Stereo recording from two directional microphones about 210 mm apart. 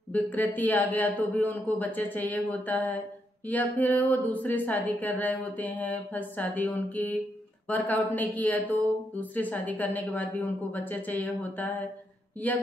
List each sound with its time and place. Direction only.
0.1 s speech: 10° left (ahead or behind)